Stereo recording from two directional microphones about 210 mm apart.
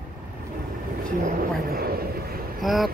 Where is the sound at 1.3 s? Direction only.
45° right (ahead or behind).